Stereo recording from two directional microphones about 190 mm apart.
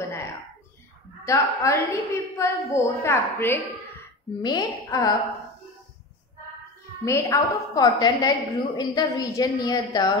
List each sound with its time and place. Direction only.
1.2 s a woman's voice: 15° left (ahead or behind)
7.1 s a woman's voice: 15° left (ahead or behind)